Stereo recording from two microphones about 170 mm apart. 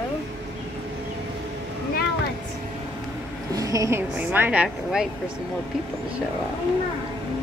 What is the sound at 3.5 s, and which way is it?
Speech, 20° right (ahead or behind).